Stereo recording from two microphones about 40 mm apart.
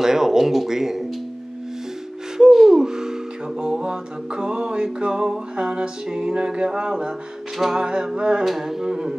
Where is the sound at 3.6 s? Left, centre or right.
Centre.